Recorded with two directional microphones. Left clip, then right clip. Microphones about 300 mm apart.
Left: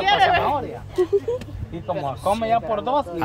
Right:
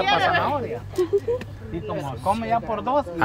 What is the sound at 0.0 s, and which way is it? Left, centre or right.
Speech, left.